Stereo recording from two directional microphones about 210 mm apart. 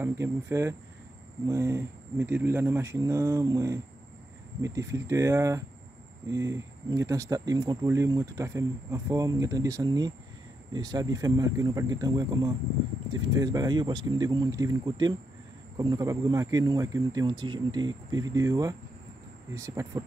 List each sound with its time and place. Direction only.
0.0 s speech: 15° right (ahead or behind)